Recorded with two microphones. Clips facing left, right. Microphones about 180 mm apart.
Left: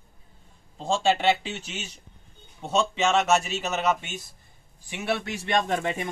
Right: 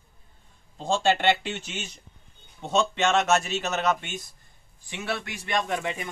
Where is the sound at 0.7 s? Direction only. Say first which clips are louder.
Even; centre (ahead or behind).